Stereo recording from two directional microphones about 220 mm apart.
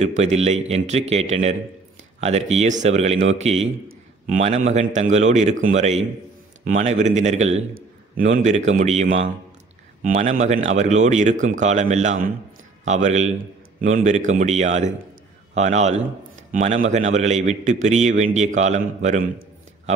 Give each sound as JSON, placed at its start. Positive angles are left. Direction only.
{"t": 0.0, "sound": "a man's voice", "side_deg": -30}
{"t": 2.1, "sound": "a sound", "side_deg": -30}
{"t": 2.5, "sound": "a man's voice", "side_deg": -30}
{"t": 10.0, "sound": "a man's voice", "side_deg": -30}